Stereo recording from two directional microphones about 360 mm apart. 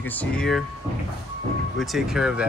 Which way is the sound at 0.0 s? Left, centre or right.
Centre.